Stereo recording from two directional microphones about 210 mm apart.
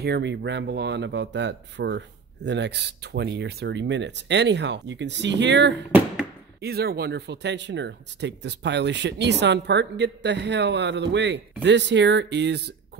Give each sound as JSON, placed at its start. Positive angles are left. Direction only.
{"t": 0.0, "sound": "speech", "side_deg": -55}
{"t": 5.9, "sound": "a sound", "side_deg": -10}
{"t": 6.6, "sound": "speech", "side_deg": -50}